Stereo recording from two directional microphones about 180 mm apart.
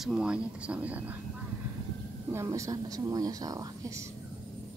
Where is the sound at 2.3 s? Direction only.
15° right (ahead or behind).